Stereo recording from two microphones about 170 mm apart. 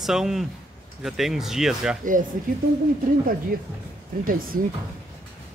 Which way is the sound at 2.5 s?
55° right (ahead or behind).